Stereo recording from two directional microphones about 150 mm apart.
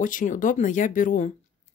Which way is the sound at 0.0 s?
60° left (ahead or behind).